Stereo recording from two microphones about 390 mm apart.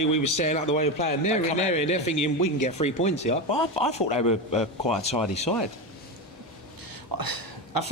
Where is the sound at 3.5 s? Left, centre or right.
Left.